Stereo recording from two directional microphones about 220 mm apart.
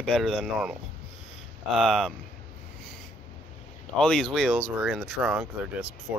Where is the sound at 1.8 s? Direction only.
Centre (ahead or behind).